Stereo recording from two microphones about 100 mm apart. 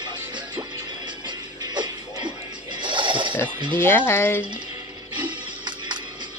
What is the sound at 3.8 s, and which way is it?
Speech, 25° left (ahead or behind).